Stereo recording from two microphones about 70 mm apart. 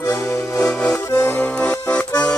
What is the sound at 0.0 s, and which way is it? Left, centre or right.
Music, left.